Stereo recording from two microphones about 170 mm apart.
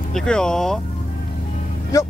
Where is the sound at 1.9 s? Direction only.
20° left (ahead or behind).